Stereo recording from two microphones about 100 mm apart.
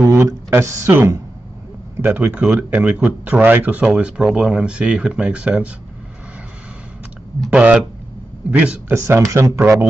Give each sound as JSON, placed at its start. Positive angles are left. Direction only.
{"t": 0.1, "sound": "speech", "side_deg": -30}
{"t": 2.0, "sound": "speech", "side_deg": -15}
{"t": 7.5, "sound": "speech", "side_deg": -10}
{"t": 8.8, "sound": "speech", "side_deg": -25}